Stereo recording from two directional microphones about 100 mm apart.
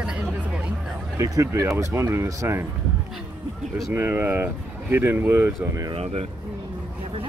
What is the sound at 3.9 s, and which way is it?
Speech, 20° right (ahead or behind).